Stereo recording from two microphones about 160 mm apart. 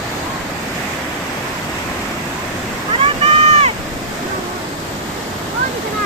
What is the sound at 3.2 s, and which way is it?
Boat, 40° right (ahead or behind).